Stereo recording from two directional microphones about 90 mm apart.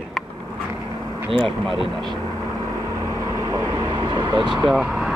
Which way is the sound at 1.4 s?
70° right (ahead or behind).